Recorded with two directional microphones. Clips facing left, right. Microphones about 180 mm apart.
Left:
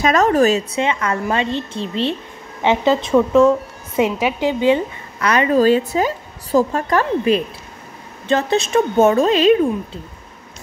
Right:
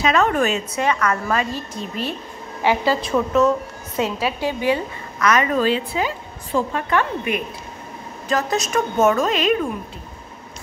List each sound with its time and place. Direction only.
0.0 s a woman's voice: 40° left (ahead or behind)